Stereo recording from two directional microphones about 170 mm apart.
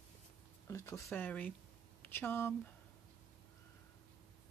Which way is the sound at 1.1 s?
10° left (ahead or behind).